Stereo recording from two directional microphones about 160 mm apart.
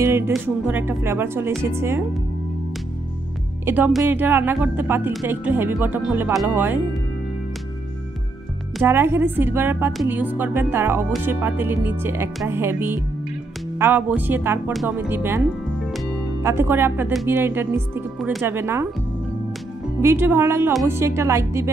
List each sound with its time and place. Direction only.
0.0 s music: 15° right (ahead or behind)
0.3 s speech: 10° right (ahead or behind)
3.6 s speech: 10° right (ahead or behind)
8.8 s speech: 15° right (ahead or behind)
16.4 s speech: 15° right (ahead or behind)
20.0 s speech: 15° right (ahead or behind)